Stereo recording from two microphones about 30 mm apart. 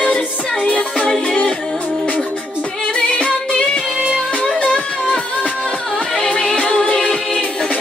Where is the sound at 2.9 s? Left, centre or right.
Left.